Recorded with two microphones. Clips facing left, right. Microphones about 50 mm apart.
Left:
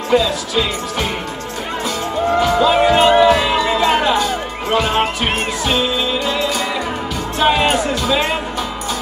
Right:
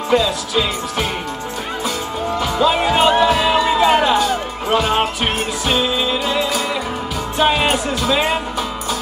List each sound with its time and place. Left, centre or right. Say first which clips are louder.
0.1 s music: left 1 dB; centre
2.4 s music: left 2 dB; centre